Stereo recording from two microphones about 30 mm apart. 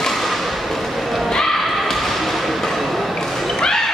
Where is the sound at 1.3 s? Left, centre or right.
Centre.